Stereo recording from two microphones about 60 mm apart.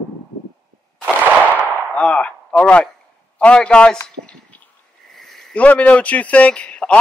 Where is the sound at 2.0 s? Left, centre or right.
Left.